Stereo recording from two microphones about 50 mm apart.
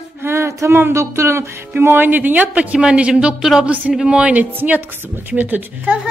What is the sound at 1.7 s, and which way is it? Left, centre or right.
A man's voice, right.